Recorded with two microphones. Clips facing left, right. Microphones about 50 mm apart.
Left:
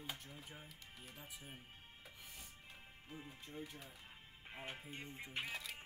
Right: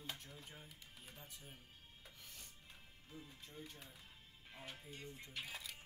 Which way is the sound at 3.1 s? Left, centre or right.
Left.